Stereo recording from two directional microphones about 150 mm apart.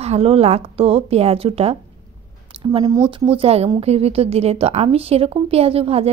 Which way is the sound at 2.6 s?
30° right (ahead or behind).